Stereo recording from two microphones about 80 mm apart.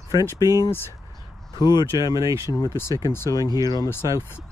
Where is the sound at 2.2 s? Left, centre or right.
Right.